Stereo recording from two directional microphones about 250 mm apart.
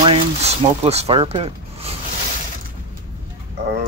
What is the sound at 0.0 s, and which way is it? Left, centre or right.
Speech, right.